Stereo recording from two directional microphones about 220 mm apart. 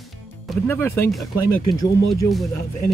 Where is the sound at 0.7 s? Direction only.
10° left (ahead or behind).